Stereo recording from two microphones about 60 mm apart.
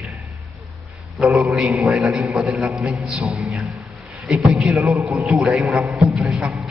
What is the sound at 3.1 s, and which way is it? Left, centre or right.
Speech, centre.